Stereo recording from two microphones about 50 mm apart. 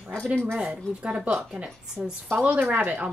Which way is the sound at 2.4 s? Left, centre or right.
Right.